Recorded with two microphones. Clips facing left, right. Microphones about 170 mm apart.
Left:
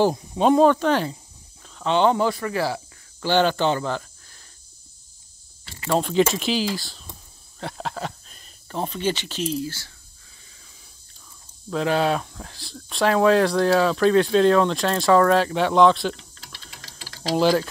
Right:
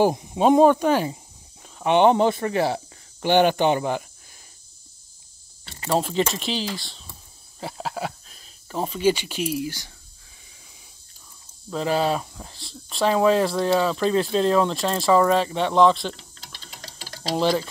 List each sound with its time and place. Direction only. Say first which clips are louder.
0.0 s speech: even; 15° right (ahead or behind)
1.1 s snake: right 1 dB; 15° right (ahead or behind)
5.9 s speech: left 3 dB; centre (ahead or behind)
11.7 s speech: left 1 dB; centre (ahead or behind)